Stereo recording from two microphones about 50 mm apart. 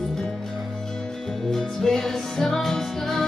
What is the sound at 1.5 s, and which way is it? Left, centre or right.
Music, centre.